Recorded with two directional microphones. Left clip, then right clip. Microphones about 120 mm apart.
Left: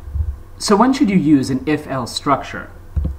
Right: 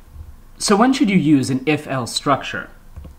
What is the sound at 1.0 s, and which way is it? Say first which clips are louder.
Speech: left 1 dB; 30° right (ahead or behind).